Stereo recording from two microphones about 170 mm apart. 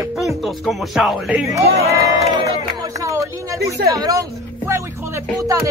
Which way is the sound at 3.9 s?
20° right (ahead or behind).